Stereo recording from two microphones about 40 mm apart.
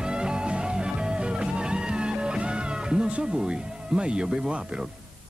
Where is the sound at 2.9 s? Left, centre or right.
Right.